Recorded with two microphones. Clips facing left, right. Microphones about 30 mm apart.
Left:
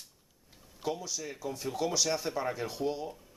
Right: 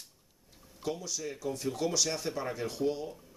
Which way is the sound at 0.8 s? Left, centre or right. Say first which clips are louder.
Even; centre.